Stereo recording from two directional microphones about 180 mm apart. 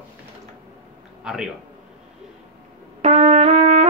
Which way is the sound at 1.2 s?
5° right (ahead or behind).